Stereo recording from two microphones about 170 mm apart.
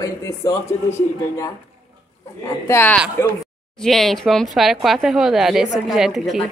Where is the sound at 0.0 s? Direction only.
15° left (ahead or behind).